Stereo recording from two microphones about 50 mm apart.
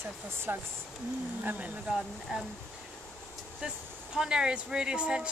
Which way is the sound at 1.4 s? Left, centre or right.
Right.